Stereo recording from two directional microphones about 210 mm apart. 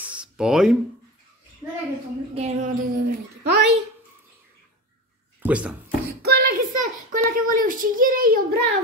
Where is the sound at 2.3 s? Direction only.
30° right (ahead or behind).